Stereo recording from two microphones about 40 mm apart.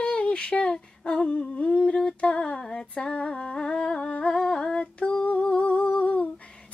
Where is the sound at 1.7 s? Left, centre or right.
Centre.